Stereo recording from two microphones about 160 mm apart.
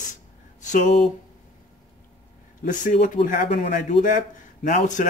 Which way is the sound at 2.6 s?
55° left (ahead or behind).